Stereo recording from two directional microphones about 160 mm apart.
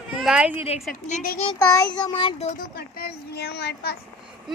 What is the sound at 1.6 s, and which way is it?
Child singing, 25° left (ahead or behind).